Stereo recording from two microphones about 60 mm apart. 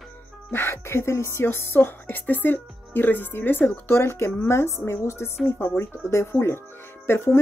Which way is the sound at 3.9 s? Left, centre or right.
Left.